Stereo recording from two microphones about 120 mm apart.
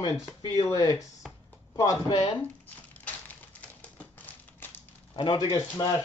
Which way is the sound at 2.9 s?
15° left (ahead or behind).